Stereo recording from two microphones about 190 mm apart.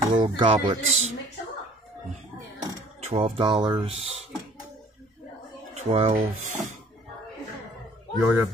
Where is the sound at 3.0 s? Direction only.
35° right (ahead or behind).